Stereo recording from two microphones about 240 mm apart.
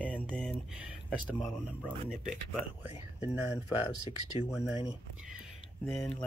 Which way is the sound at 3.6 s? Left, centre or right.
Centre.